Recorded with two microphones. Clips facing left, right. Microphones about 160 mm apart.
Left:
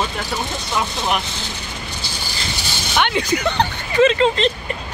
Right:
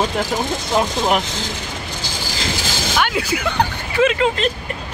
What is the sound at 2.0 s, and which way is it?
Vehicle, 90° right.